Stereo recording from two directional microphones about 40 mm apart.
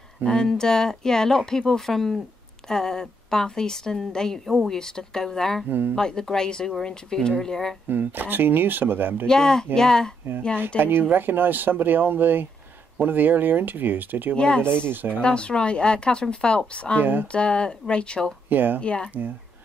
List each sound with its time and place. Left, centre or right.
0.2 s speech: centre
4.5 s speech: centre
4.7 s speech: centre
7.9 s speech: right
9.3 s speech: centre
10.8 s speech: right
14.3 s speech: left
14.8 s speech: right
15.2 s speech: left
17.0 s speech: right
17.3 s speech: left
18.5 s speech: right
18.8 s speech: left